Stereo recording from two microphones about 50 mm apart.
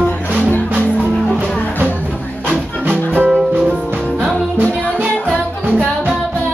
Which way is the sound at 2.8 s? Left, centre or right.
Right.